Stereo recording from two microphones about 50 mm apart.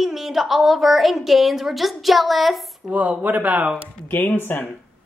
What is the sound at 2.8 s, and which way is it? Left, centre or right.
Speech, right.